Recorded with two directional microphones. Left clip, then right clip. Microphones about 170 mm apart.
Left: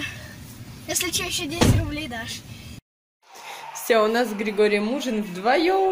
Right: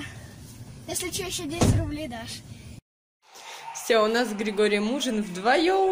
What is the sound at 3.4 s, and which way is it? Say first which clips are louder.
A woman's voice: left 3 dB; centre (ahead or behind).